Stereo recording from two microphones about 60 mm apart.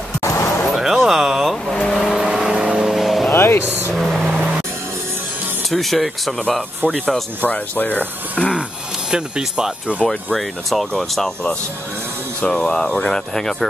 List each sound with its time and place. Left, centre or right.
0.2 s a sound: left
0.7 s a sound: centre
1.9 s vehicle: centre
2.1 s vehicle: centre
3.3 s vehicle: left
3.9 s car: centre
5.7 s speech: centre
7.4 s speech: left
9.1 s speech: centre
10.0 s speech: centre
12.4 s speech: centre